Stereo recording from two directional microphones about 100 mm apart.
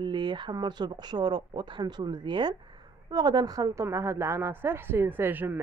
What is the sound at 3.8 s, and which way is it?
Speech, 25° right (ahead or behind).